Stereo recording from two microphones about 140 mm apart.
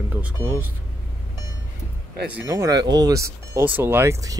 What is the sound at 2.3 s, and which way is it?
Speech, 20° right (ahead or behind).